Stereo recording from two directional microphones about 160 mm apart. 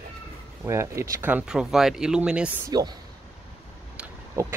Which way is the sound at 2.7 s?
25° right (ahead or behind).